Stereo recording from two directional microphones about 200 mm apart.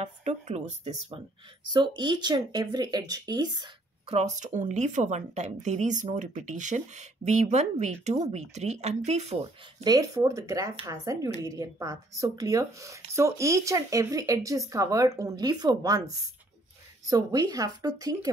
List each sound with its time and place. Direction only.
0.0 s speech: 35° right (ahead or behind)
1.7 s speech: 20° right (ahead or behind)
4.2 s speech: 35° right (ahead or behind)
9.8 s speech: 15° right (ahead or behind)